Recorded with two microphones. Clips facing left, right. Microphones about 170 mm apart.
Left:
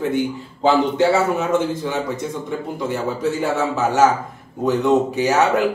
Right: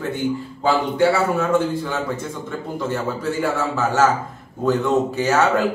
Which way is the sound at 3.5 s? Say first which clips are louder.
Left 2 dB; 20° left (ahead or behind).